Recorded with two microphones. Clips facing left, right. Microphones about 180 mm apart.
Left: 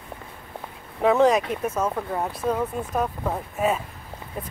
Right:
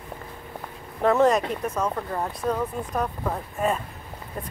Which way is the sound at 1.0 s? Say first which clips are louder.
Left 1 dB; centre (ahead or behind).